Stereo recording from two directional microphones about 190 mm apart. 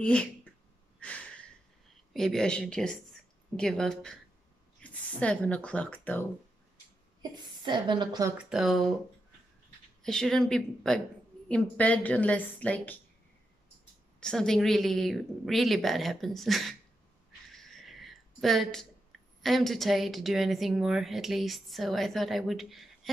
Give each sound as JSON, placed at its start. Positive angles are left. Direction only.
{"t": 0.0, "sound": "a woman's voice", "side_deg": 5}
{"t": 0.9, "sound": "a sound", "side_deg": 5}
{"t": 2.1, "sound": "a woman's voice", "side_deg": 0}
{"t": 7.2, "sound": "a woman's voice", "side_deg": -25}
{"t": 8.5, "sound": "a woman's voice", "side_deg": 0}
{"t": 10.0, "sound": "a woman's voice", "side_deg": 5}
{"t": 14.2, "sound": "a woman's voice", "side_deg": 5}
{"t": 17.5, "sound": "a sound", "side_deg": 0}
{"t": 19.4, "sound": "a woman's voice", "side_deg": 0}